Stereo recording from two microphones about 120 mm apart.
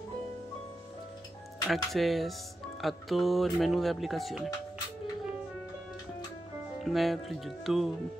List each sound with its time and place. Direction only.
1.7 s speech: centre (ahead or behind)
6.8 s speech: centre (ahead or behind)